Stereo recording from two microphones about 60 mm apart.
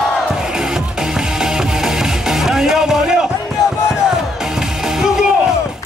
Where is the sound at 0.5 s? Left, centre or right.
Centre.